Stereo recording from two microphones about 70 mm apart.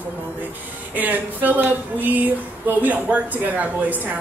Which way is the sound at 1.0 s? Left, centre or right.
Right.